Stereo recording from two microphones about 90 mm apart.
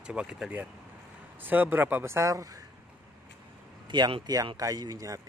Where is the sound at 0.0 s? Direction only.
10° right (ahead or behind); by 2.4 s 30° right (ahead or behind).